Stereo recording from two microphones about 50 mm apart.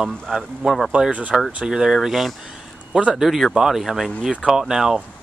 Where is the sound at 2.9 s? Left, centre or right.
Right.